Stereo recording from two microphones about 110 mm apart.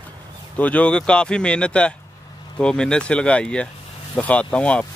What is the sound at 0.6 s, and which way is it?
Speech, 10° left (ahead or behind).